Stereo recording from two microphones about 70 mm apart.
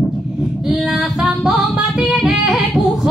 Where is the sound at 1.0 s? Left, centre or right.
Centre.